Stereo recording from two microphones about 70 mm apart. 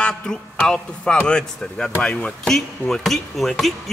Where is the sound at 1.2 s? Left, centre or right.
Centre.